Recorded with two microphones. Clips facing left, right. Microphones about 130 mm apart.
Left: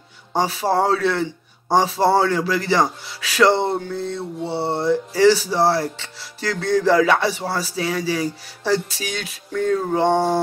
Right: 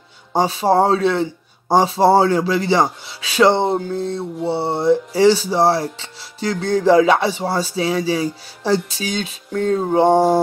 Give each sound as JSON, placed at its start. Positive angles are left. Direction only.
{"t": 0.3, "sound": "speech", "side_deg": -25}